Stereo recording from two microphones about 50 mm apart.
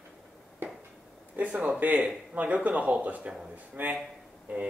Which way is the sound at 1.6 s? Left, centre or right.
Right.